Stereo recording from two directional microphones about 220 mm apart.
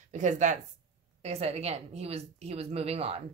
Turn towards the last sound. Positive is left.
turn(degrees=-25)  # may be behind; listen again after turning